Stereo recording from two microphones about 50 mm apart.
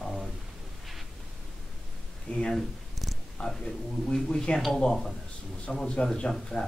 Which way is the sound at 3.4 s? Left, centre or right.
Centre.